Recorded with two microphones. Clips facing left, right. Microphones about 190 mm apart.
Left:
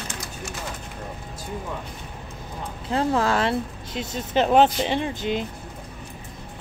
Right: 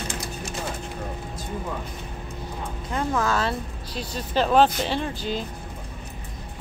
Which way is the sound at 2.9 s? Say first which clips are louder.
Left 3 dB; 30° left (ahead or behind).